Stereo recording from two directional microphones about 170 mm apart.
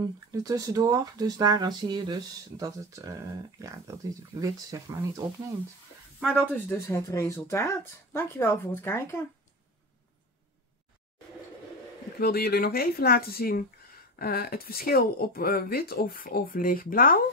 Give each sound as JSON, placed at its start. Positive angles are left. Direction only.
{"t": 0.0, "sound": "speech", "side_deg": -20}
{"t": 6.3, "sound": "speech", "side_deg": 10}
{"t": 12.2, "sound": "speech", "side_deg": 65}